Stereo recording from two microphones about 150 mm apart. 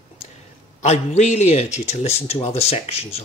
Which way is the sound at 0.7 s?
50° left (ahead or behind).